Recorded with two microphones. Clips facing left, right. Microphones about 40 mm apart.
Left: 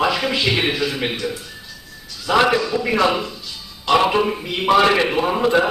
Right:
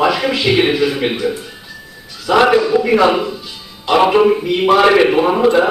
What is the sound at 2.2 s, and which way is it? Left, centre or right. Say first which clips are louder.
A man's voice: right 5 dB; centre.